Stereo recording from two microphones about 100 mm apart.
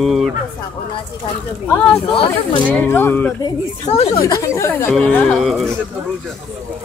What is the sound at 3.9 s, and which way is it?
Speech, 90° left.